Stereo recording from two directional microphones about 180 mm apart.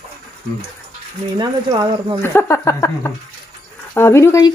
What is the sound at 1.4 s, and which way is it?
Speech, 25° right (ahead or behind).